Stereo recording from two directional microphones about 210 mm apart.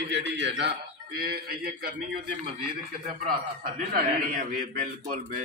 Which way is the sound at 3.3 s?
45° right (ahead or behind).